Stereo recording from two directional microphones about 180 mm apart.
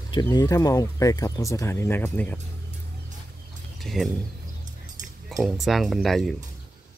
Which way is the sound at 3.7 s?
Centre (ahead or behind).